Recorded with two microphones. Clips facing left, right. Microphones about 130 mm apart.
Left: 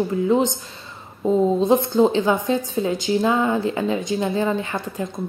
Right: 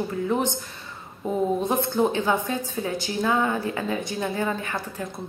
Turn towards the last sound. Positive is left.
turn(degrees=20)  # may be behind; listen again after turning